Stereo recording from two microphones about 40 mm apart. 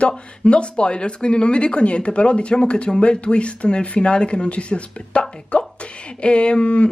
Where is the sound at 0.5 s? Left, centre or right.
Left.